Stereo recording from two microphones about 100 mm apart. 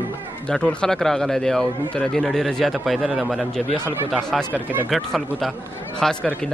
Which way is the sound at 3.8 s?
25° right (ahead or behind).